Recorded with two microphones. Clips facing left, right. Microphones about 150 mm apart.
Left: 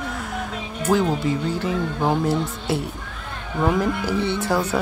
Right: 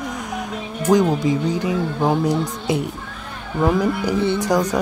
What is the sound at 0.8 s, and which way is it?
Speech, 10° right (ahead or behind).